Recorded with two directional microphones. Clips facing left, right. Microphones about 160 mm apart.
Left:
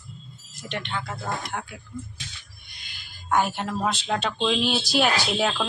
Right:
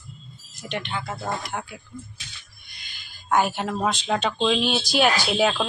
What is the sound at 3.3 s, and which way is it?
Speech, 5° right (ahead or behind).